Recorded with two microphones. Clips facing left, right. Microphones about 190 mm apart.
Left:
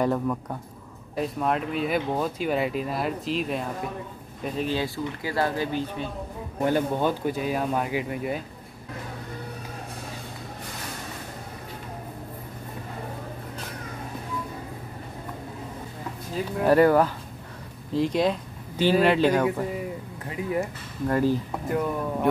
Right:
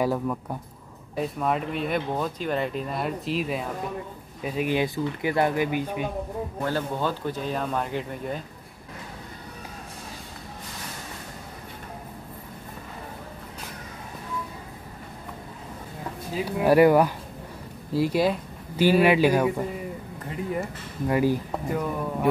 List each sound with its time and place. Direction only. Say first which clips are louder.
0.0 s speech: left 1 dB; 5° right (ahead or behind)
6.6 s speech: left 5 dB; 15° left (ahead or behind)
16.3 s speech: right 1 dB; 5° right (ahead or behind)
21.1 s speech: even; 10° right (ahead or behind)
21.6 s speech: left 2 dB; centre (ahead or behind)